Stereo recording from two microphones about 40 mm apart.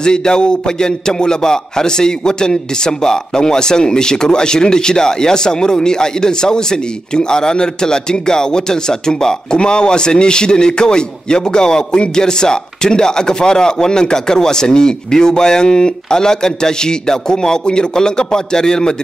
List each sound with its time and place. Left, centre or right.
0.0 s a man's voice: centre